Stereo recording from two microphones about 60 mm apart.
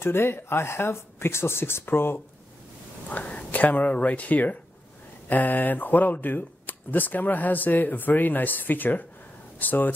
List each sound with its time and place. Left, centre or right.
0.0 s speech: left
3.1 s speech: left